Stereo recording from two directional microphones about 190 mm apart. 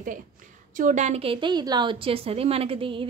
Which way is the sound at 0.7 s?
40° right (ahead or behind).